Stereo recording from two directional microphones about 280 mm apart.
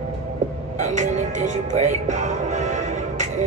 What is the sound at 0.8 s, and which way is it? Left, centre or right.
Music, right.